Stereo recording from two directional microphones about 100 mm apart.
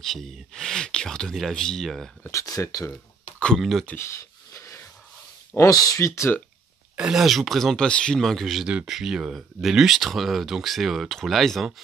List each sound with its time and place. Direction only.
0.0 s speech: 5° left (ahead or behind)
2.3 s speech: 35° left (ahead or behind)
3.5 s speech: centre (ahead or behind)
3.8 s speech: 20° left (ahead or behind)
4.6 s a sound: 30° left (ahead or behind)
5.6 s speech: 35° left (ahead or behind)
7.0 s speech: 5° right (ahead or behind)